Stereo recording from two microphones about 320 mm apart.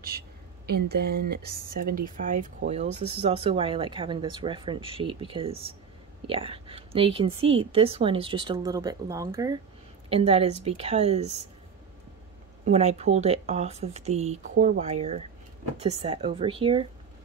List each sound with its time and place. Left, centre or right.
0.7 s a woman's voice: right
12.6 s a woman's voice: right